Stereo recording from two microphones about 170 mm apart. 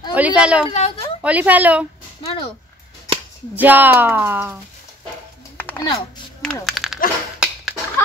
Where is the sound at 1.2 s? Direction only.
10° right (ahead or behind).